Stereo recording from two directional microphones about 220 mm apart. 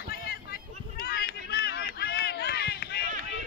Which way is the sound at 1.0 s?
45° left (ahead or behind).